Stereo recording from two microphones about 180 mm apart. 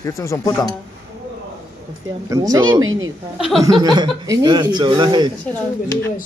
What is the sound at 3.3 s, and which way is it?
Speech, centre (ahead or behind).